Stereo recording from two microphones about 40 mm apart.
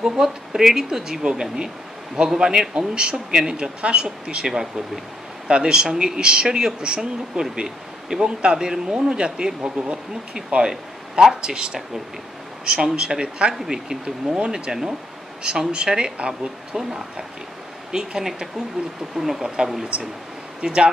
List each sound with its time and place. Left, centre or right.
0.0 s a woman's voice: centre
4.6 s a woman's voice: centre
9.6 s speech: right
10.6 s a woman's voice: centre
20.6 s speech: right